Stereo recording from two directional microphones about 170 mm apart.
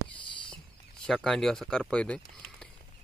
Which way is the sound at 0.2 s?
30° left (ahead or behind).